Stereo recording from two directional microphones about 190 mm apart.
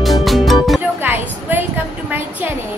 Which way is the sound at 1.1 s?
10° right (ahead or behind).